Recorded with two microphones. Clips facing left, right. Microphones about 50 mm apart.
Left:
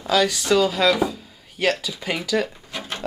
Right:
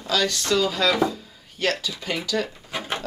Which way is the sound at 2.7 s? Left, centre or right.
Right.